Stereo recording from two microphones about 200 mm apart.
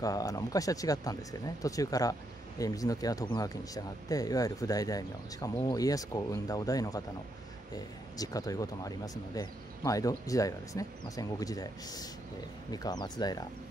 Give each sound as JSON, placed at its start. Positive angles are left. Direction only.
{"t": 0.0, "sound": "speech", "side_deg": 15}